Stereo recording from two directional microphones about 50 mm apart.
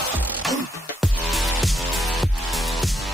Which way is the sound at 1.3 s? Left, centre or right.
Centre.